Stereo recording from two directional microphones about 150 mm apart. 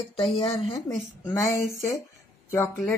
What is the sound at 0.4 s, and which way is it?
Speech, 40° left (ahead or behind).